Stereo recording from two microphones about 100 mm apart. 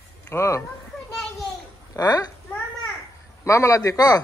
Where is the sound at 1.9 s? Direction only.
40° left (ahead or behind).